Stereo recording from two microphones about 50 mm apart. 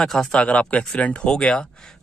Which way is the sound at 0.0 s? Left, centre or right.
Centre.